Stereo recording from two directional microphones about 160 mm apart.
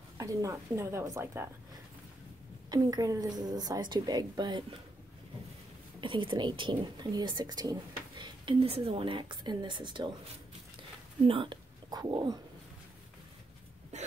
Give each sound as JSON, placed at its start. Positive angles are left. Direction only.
{"t": 0.2, "sound": "speech", "side_deg": -20}
{"t": 2.7, "sound": "speech", "side_deg": -25}
{"t": 5.9, "sound": "speech", "side_deg": -30}
{"t": 11.2, "sound": "speech", "side_deg": -30}
{"t": 13.9, "sound": "hiccup", "side_deg": -45}